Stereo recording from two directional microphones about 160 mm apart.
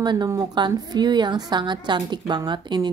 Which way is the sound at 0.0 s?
25° right (ahead or behind).